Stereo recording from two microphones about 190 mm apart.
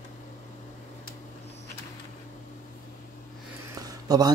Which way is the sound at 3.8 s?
20° right (ahead or behind).